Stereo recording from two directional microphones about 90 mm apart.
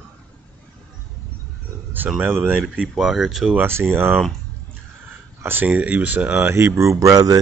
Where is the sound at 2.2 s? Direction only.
20° right (ahead or behind).